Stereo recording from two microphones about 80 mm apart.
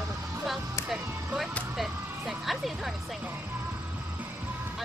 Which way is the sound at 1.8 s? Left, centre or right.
Centre.